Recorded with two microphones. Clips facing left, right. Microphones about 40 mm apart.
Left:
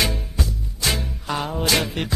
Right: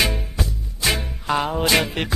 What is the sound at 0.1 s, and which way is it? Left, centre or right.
Music, centre.